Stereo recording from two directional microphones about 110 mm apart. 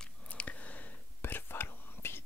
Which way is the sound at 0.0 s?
10° left (ahead or behind).